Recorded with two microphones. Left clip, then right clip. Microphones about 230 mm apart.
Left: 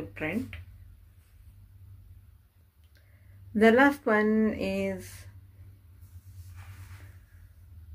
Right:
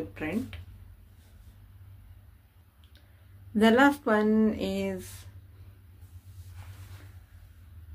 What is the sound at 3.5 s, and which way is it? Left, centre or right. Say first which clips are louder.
Speech: left 1 dB; centre.